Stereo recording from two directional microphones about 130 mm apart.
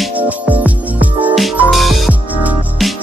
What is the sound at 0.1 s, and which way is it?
Music, 10° right (ahead or behind).